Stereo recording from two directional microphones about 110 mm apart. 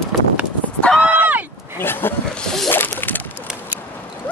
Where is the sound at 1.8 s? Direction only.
20° left (ahead or behind).